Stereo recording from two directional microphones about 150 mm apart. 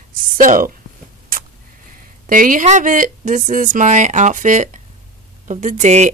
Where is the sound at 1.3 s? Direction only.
70° right (ahead or behind).